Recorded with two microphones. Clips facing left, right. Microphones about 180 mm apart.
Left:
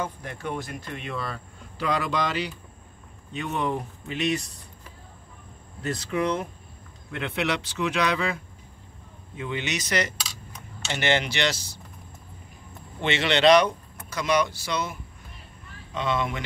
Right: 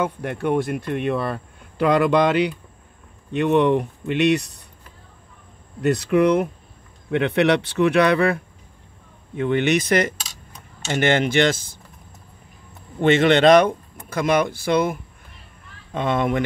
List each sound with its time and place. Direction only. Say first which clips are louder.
0.0 s speech: right 8 dB; 60° right (ahead or behind)
5.8 s speech: right 10 dB; 65° right (ahead or behind)
9.4 s speech: right 11 dB; 60° right (ahead or behind)
13.0 s speech: right 7 dB; 50° right (ahead or behind)